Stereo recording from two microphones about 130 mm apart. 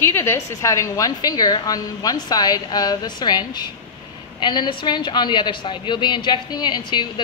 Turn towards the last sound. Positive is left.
turn(degrees=35)  # may be behind; listen again after turning